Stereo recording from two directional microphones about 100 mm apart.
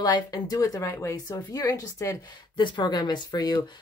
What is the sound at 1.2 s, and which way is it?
Speech, 40° left (ahead or behind).